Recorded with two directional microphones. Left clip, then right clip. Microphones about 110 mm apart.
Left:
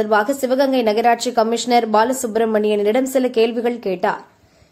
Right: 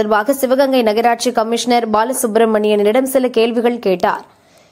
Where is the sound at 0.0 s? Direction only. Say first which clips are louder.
Right 3 dB; 30° right (ahead or behind).